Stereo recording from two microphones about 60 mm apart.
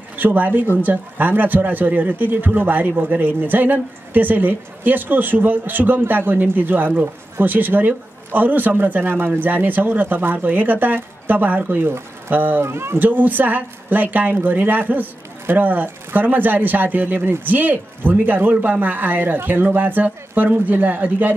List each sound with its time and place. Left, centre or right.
0.2 s speech: right
12.6 s speech: right
13.0 s speech: right